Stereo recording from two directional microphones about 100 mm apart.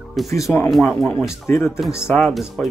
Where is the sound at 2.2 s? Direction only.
5° left (ahead or behind).